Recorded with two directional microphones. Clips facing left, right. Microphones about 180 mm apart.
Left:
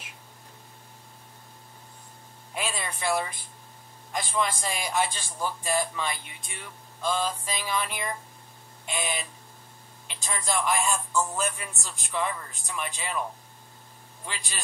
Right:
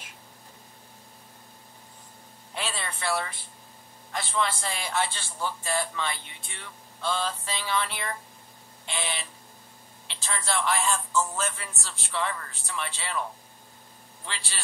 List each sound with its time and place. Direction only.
2.5 s a man's voice: 15° left (ahead or behind)
14.2 s a man's voice: 15° left (ahead or behind)